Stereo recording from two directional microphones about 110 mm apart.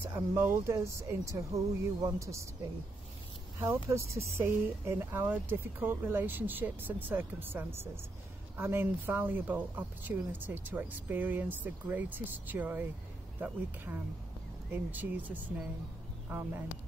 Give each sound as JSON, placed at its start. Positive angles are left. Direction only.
{"t": 0.0, "sound": "speech", "side_deg": -20}
{"t": 3.5, "sound": "speech", "side_deg": -25}